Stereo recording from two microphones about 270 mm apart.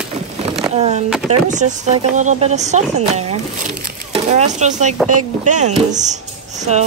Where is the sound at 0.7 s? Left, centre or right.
Right.